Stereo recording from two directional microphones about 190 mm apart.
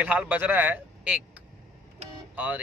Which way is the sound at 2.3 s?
5° right (ahead or behind).